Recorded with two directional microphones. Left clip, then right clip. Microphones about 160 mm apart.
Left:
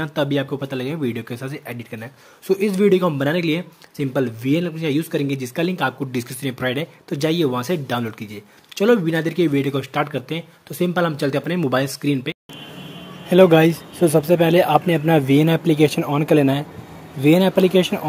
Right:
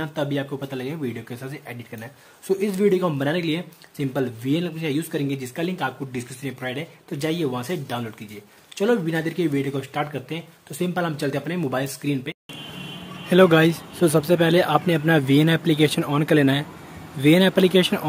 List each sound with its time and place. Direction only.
0.0 s speech: 25° left (ahead or behind)
13.3 s speech: 10° left (ahead or behind)